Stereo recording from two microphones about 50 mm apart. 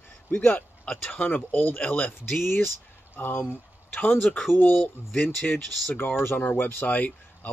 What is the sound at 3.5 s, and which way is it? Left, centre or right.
Speech, left.